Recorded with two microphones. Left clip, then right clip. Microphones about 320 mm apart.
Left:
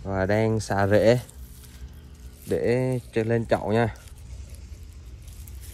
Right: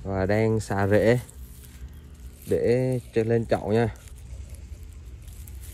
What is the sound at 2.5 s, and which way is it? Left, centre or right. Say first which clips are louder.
Speech: right 1 dB; left.